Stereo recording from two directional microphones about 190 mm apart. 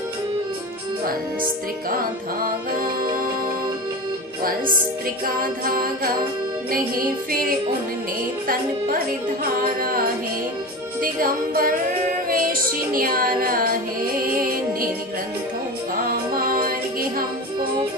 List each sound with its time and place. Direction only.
4.4 s speech: 50° right (ahead or behind)
8.5 s speech: 50° right (ahead or behind)
12.9 s speech: 50° right (ahead or behind)
16.3 s music: 50° right (ahead or behind)